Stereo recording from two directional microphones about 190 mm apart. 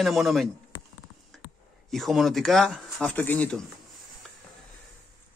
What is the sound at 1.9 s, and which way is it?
Speech, centre (ahead or behind).